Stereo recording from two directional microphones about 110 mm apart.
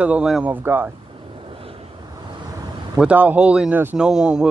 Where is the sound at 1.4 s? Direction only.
55° right (ahead or behind).